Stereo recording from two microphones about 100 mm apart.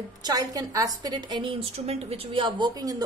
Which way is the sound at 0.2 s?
40° right (ahead or behind).